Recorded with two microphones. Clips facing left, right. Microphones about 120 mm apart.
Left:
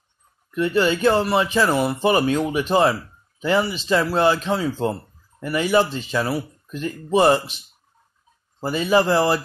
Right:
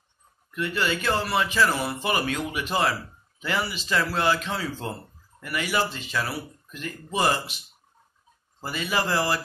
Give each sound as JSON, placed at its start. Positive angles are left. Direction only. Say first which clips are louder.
{"t": 0.6, "sound": "speech", "louder": "left 8 dB", "side_deg": 25}